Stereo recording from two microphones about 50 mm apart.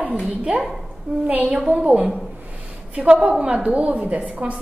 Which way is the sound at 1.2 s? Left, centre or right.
Right.